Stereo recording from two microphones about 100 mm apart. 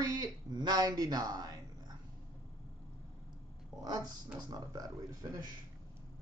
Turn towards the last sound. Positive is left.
turn(degrees=-40)  # may be behind; listen again after turning